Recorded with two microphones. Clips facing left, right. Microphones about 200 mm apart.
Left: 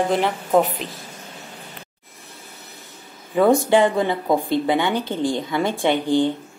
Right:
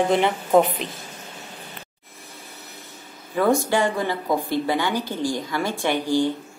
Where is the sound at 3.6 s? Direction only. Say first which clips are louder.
Left 5 dB; 20° left (ahead or behind).